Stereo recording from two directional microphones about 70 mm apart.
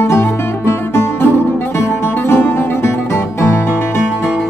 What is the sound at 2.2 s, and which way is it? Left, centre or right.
Music, left.